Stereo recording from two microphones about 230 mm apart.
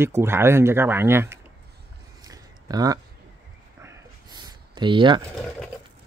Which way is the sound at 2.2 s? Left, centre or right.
Centre.